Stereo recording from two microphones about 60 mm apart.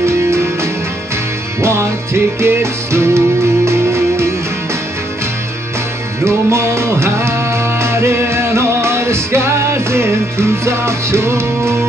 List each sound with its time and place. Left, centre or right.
0.0 s music: right
6.2 s music: right